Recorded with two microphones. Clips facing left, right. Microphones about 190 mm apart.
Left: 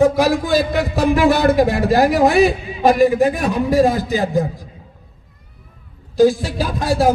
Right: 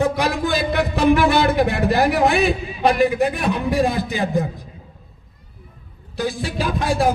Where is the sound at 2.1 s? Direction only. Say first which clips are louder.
Left 4 dB; 40° left (ahead or behind).